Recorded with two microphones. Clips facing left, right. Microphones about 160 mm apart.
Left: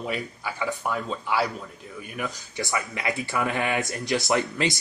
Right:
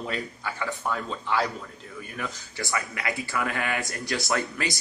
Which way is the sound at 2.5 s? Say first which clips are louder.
Left 2 dB; 20° left (ahead or behind).